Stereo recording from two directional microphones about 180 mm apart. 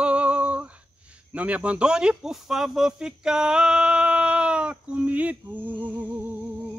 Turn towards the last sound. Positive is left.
turn(degrees=-10)  # may be behind; listen again after turning